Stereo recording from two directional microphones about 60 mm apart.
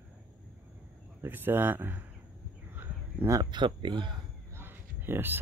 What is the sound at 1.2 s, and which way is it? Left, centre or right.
Speech, right.